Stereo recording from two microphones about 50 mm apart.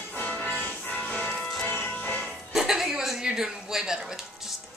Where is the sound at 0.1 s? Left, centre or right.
Left.